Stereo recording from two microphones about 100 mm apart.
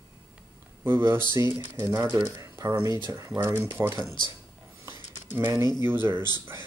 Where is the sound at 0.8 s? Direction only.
25° right (ahead or behind).